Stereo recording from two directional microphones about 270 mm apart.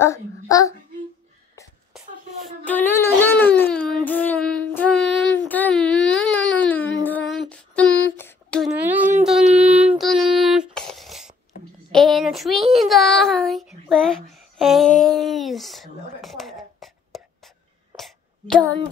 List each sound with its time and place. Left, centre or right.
0.0 s speech: centre
2.0 s a sound: centre
4.0 s child singing: centre
7.0 s female singing: centre
9.5 s child singing: right
9.8 s a sound: centre
12.7 s child singing: centre
17.9 s throat clearing: centre